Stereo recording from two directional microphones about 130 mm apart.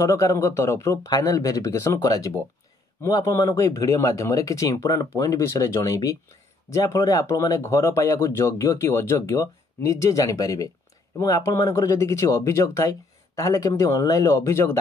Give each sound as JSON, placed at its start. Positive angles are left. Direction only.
{"t": 0.0, "sound": "speech", "side_deg": 25}